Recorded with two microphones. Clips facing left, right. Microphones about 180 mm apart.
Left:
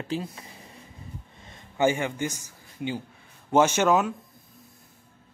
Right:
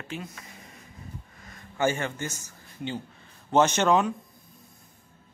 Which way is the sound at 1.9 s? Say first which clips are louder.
Left 3 dB; 15° left (ahead or behind).